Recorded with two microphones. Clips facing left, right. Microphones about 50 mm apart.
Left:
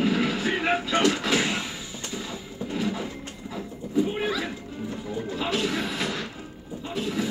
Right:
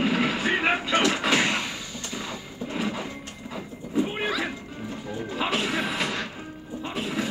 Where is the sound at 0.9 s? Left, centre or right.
Right.